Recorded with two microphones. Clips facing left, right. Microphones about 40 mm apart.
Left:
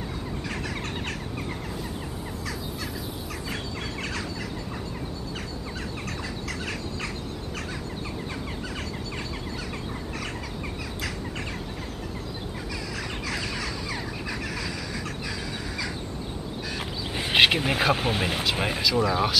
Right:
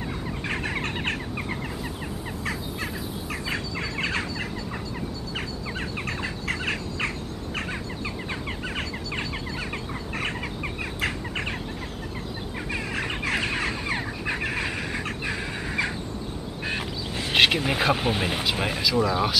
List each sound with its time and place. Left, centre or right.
0.5 s a sound: right
3.4 s a sound: right
6.0 s bird: right
11.0 s bird: right
12.9 s bird: right
15.2 s fowl: right
17.2 s speech: centre